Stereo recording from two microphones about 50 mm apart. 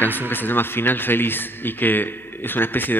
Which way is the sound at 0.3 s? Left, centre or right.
Left.